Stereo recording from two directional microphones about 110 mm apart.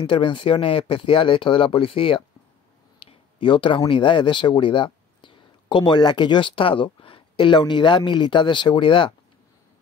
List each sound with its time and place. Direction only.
0.0 s speech: 50° left (ahead or behind)
3.1 s a sound: 50° left (ahead or behind)
3.8 s speech: 50° left (ahead or behind)